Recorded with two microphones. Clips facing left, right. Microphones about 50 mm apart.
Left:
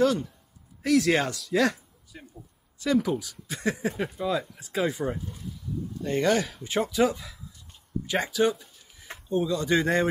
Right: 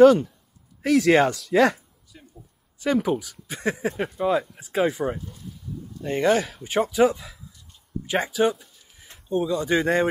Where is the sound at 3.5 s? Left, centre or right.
Centre.